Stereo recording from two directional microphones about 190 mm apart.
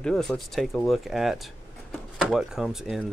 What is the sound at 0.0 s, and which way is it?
Speech, 5° left (ahead or behind).